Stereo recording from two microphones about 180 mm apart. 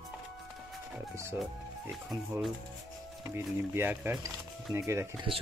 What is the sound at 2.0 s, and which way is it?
Speech, 5° right (ahead or behind).